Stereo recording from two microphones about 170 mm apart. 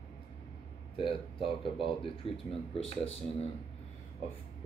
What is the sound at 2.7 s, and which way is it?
Speech, 35° left (ahead or behind).